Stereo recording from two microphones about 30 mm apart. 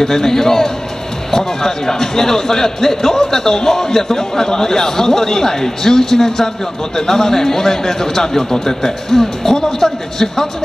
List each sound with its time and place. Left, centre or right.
0.0 s a man's voice: centre